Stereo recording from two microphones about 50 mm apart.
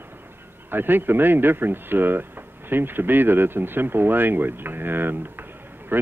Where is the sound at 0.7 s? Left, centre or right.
Right.